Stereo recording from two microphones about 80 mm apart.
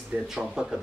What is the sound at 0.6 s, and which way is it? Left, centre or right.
Speech, centre.